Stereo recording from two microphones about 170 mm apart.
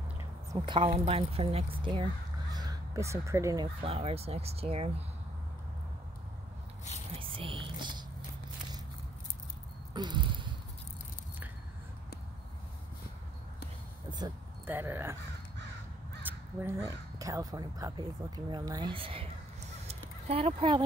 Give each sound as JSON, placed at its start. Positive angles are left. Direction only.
{"t": 0.6, "sound": "speech", "side_deg": -30}
{"t": 2.5, "sound": "speech", "side_deg": -20}
{"t": 3.8, "sound": "speech", "side_deg": -35}
{"t": 7.2, "sound": "speech", "side_deg": -30}
{"t": 9.9, "sound": "a sound", "side_deg": -25}
{"t": 14.7, "sound": "speech", "side_deg": -10}
{"t": 16.3, "sound": "speech", "side_deg": -15}
{"t": 19.9, "sound": "a sound", "side_deg": -40}